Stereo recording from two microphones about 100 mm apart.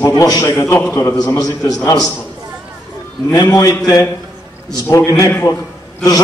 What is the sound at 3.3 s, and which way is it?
A man's voice, 35° left (ahead or behind).